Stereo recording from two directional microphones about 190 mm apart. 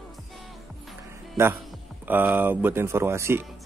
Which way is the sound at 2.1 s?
10° right (ahead or behind).